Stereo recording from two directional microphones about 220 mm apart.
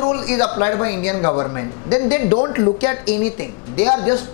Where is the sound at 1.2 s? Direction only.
25° left (ahead or behind).